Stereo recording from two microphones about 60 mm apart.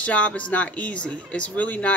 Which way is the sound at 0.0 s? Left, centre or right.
Left.